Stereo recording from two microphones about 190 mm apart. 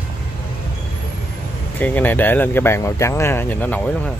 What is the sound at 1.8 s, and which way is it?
Speech, 10° left (ahead or behind).